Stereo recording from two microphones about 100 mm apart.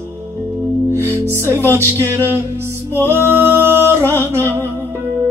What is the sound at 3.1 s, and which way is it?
Singing, 25° right (ahead or behind).